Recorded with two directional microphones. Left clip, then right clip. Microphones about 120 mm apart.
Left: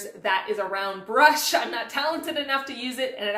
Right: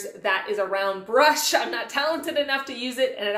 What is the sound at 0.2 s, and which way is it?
A woman's voice, 20° right (ahead or behind).